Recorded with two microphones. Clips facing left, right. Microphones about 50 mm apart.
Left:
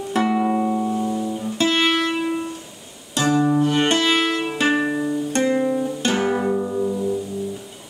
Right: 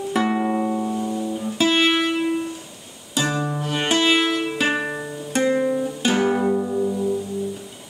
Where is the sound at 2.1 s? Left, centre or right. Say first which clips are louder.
Right 1 dB; centre.